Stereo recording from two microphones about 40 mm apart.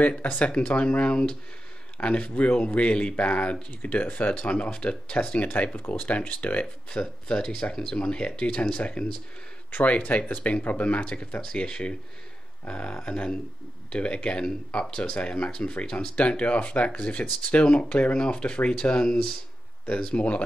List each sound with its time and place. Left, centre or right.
0.2 s speech: left
4.6 s speech: left
5.5 s speech: left
6.6 s speech: left
11.4 s speech: left
15.1 s speech: left
20.2 s speech: left